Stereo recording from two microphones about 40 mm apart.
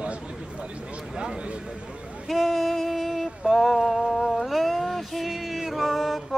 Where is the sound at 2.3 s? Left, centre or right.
Centre.